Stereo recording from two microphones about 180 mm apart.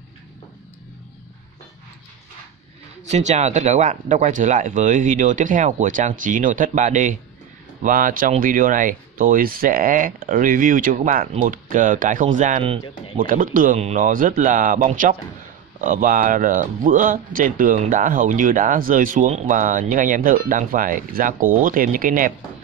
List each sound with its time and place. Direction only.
3.1 s speech: 40° right (ahead or behind)